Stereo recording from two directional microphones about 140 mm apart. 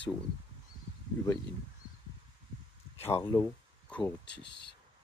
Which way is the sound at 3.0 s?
20° left (ahead or behind).